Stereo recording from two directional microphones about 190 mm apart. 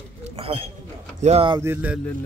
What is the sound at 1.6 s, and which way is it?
Music, 10° right (ahead or behind).